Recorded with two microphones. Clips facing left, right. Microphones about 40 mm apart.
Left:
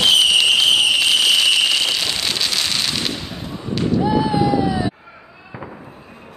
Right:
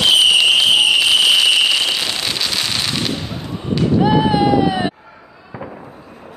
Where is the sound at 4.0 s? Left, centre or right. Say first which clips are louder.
Right 3 dB; right.